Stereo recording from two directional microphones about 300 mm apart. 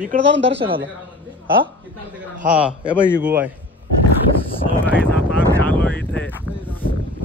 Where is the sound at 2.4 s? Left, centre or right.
Centre.